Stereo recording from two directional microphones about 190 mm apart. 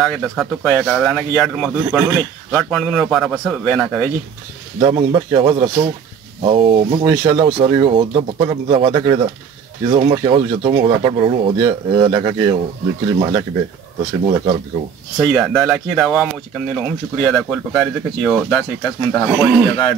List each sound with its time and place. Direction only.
0.0 s speech: centre (ahead or behind)
4.7 s speech: 25° right (ahead or behind)
15.1 s speech: centre (ahead or behind)